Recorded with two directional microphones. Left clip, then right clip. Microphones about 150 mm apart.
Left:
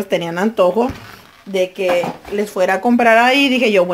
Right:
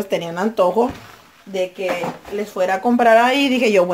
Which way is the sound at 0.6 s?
5° left (ahead or behind).